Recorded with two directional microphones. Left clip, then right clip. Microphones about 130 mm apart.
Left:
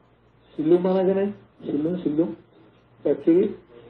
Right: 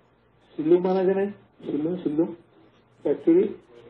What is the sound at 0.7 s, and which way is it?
A man's voice, 20° right (ahead or behind).